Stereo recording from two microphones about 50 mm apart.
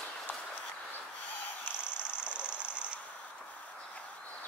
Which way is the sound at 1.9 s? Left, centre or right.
Right.